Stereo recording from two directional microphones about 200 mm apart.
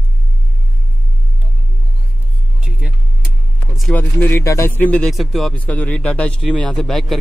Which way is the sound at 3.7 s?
Centre (ahead or behind).